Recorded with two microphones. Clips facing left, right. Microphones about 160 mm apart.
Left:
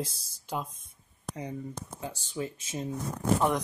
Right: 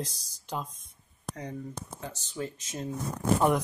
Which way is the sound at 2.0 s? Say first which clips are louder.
Left 2 dB; 10° left (ahead or behind).